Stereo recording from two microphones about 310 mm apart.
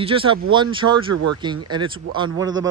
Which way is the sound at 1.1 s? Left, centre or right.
Right.